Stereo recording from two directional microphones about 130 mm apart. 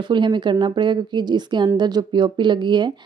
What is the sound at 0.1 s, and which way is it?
Speech, 35° right (ahead or behind).